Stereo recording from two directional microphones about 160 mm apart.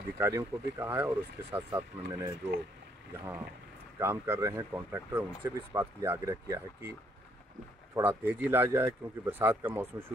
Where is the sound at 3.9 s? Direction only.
15° right (ahead or behind).